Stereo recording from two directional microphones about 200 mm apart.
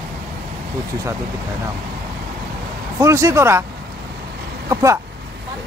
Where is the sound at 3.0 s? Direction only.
15° right (ahead or behind).